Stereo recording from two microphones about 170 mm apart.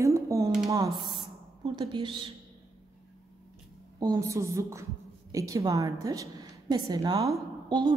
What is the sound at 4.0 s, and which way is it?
A woman's voice, 20° right (ahead or behind).